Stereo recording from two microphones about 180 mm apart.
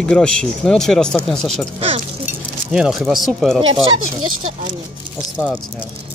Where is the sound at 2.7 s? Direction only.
5° right (ahead or behind).